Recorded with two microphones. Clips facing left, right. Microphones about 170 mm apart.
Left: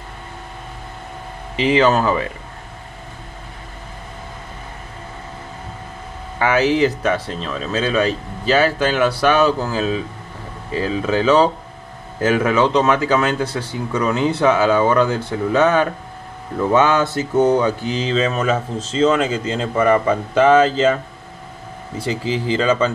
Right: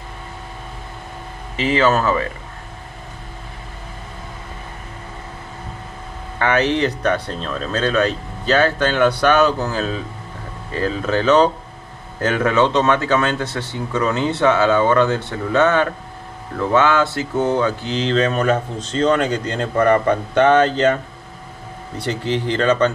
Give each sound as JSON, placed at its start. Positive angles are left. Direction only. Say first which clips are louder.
{"t": 1.6, "sound": "speech", "louder": "left 2 dB", "side_deg": 15}
{"t": 6.3, "sound": "speech", "louder": "left 1 dB", "side_deg": 5}
{"t": 22.0, "sound": "speech", "louder": "even", "side_deg": 5}